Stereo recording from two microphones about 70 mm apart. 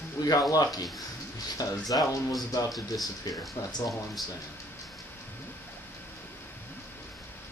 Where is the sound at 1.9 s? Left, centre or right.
Left.